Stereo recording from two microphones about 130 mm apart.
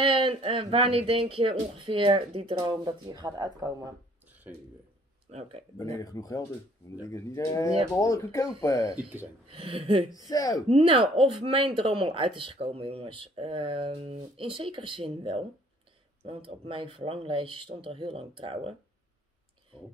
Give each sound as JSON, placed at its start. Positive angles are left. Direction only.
{"t": 0.0, "sound": "speech", "side_deg": -40}
{"t": 2.6, "sound": "speech", "side_deg": -35}
{"t": 5.3, "sound": "speech", "side_deg": -50}
{"t": 5.8, "sound": "speech", "side_deg": 25}
{"t": 8.9, "sound": "speech", "side_deg": -10}
{"t": 9.5, "sound": "speech", "side_deg": -45}
{"t": 10.1, "sound": "speech", "side_deg": 30}
{"t": 10.7, "sound": "speech", "side_deg": -45}